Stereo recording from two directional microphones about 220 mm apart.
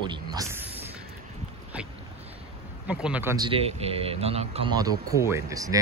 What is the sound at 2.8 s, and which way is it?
Speech, 5° right (ahead or behind).